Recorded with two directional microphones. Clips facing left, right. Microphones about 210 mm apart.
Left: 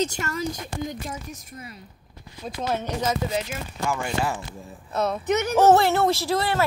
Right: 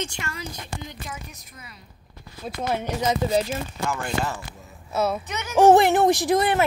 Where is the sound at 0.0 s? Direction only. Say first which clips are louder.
Left 6 dB; 40° left (ahead or behind).